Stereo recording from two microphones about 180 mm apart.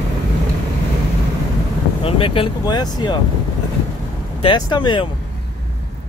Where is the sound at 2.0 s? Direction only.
30° left (ahead or behind).